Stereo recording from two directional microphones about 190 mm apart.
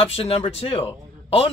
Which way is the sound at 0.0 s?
30° left (ahead or behind).